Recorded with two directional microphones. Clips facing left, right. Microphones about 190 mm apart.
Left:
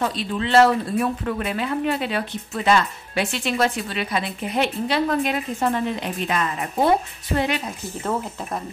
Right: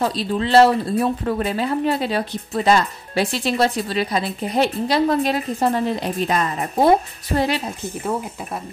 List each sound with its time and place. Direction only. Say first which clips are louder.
0.0 s speech: right 3 dB; 35° right (ahead or behind)